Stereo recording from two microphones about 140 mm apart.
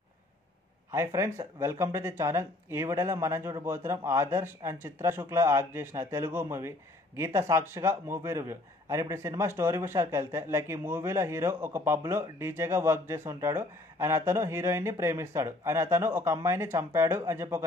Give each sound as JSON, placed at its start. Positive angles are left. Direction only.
{"t": 0.9, "sound": "speech", "side_deg": -20}